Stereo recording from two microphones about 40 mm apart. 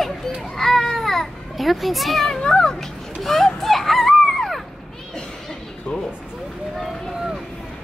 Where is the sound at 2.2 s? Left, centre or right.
Centre.